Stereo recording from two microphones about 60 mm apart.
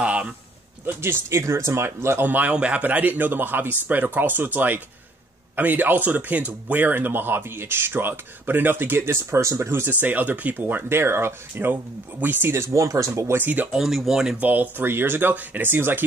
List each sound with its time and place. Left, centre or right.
0.0 s a sound: centre
0.8 s speech: right
2.2 s speech: right
9.7 s speech: right
13.3 s speech: right
13.7 s speech: centre
14.4 s speech: right